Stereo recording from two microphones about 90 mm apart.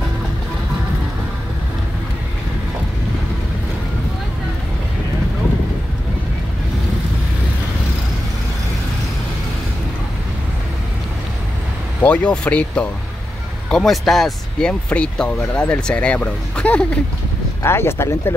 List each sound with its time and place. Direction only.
12.0 s speech: 15° left (ahead or behind)
14.7 s speech: 15° left (ahead or behind)
17.6 s speech: 25° left (ahead or behind)